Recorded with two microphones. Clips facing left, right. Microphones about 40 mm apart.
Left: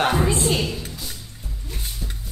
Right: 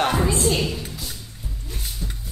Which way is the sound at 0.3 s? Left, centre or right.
Left.